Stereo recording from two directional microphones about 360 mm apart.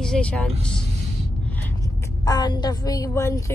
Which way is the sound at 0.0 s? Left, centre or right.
Centre.